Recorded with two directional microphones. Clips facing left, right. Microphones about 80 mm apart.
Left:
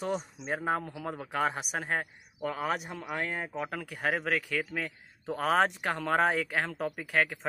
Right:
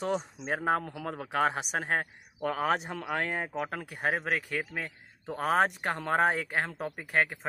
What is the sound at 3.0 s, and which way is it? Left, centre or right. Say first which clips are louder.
Speech: right 2 dB; right.